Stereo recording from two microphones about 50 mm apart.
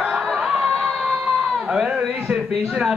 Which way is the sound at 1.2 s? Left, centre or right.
Centre.